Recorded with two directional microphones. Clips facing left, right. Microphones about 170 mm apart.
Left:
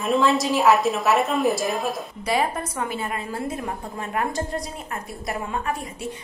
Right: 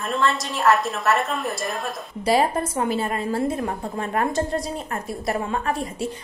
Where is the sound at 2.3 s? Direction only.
30° right (ahead or behind).